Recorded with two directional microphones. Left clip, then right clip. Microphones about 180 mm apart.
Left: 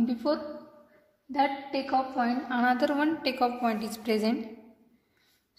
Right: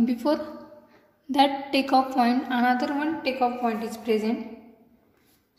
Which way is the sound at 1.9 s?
30° right (ahead or behind).